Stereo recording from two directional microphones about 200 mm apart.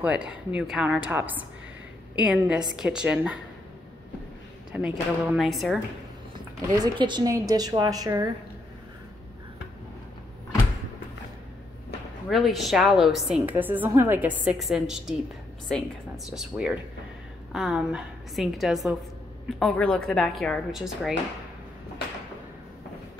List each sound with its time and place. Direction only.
0.0 s a woman's voice: 5° right (ahead or behind)
4.7 s a woman's voice: 5° right (ahead or behind)
6.8 s a woman's voice: 20° right (ahead or behind)
12.3 s a woman's voice: centre (ahead or behind)
16.3 s a woman's voice: 5° right (ahead or behind)